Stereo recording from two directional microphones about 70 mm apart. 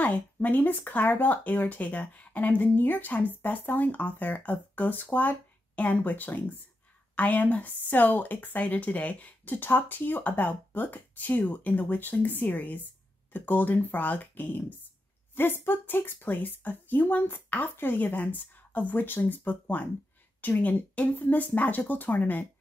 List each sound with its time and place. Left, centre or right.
0.0 s speech: left